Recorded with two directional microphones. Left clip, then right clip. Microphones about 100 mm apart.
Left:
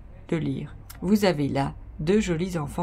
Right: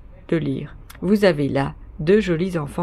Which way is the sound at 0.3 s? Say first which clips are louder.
Right 6 dB; 15° right (ahead or behind).